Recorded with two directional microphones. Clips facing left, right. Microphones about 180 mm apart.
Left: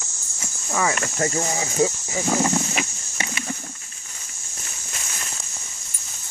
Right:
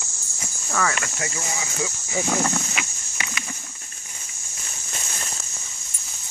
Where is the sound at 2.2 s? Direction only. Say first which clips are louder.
Left 4 dB; 10° left (ahead or behind).